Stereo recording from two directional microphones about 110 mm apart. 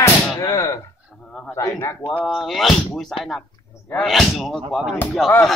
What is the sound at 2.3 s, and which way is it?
A man's voice, centre (ahead or behind).